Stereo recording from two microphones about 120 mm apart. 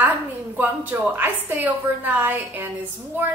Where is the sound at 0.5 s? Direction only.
15° right (ahead or behind).